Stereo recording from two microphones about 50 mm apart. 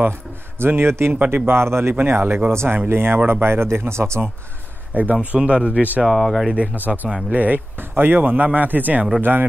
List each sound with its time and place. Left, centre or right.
0.6 s speech: right
2.0 s speech: right
2.9 s speech: right
4.9 s speech: right
6.0 s speech: centre
6.5 s speech: right